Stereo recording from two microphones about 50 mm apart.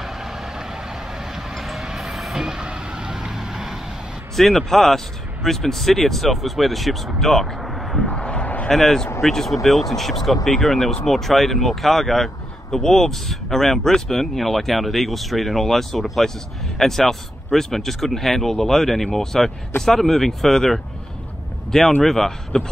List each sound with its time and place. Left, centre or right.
0.0 s vehicle: centre
4.4 s speech: centre
8.1 s a sound: left
8.6 s speech: centre
22.0 s speech: centre